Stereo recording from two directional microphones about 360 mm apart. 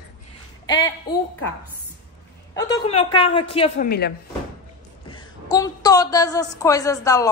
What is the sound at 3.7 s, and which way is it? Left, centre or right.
Speech, left.